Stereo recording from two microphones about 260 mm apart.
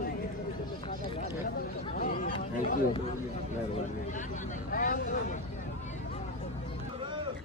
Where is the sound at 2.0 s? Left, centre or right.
Left.